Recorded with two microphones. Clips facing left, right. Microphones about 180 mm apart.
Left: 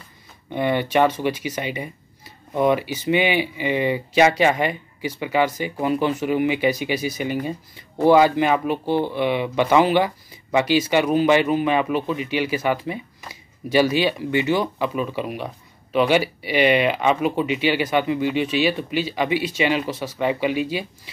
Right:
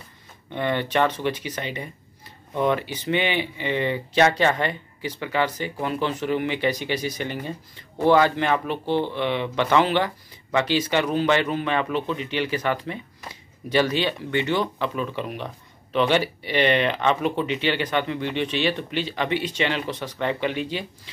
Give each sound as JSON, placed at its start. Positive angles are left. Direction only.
{"t": 0.5, "sound": "speech", "side_deg": 10}